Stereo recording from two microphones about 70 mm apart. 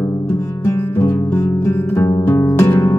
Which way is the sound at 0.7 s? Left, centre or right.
Left.